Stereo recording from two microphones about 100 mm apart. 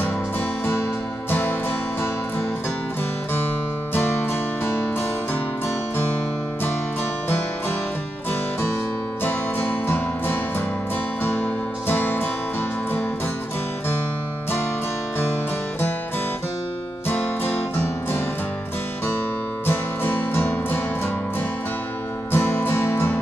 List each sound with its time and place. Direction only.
3.9 s music: 20° left (ahead or behind)
9.2 s music: 20° left (ahead or behind)
11.3 s music: 15° left (ahead or behind)
19.6 s music: 20° left (ahead or behind)
22.3 s music: 20° left (ahead or behind)